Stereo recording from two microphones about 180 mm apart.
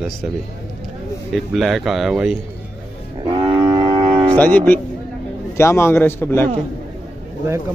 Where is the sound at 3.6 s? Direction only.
30° right (ahead or behind).